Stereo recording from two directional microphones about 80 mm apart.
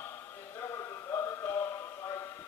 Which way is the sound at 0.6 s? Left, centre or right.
Left.